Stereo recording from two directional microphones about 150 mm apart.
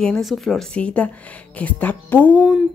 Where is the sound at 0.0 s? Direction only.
Centre (ahead or behind).